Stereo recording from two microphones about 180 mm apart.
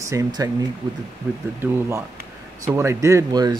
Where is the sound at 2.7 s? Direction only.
15° right (ahead or behind).